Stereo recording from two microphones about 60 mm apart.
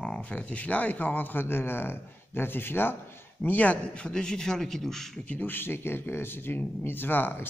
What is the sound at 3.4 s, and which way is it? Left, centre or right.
A man's voice, left.